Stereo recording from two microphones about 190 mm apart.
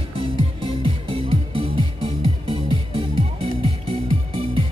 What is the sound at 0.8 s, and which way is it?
Music, 30° right (ahead or behind).